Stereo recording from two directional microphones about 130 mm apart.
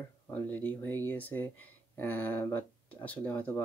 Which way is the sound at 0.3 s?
15° left (ahead or behind).